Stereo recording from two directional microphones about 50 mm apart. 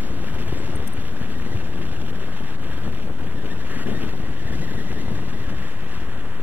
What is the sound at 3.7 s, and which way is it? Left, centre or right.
Wind noise, right.